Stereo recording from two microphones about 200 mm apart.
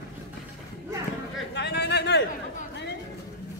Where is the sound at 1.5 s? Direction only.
55° left (ahead or behind).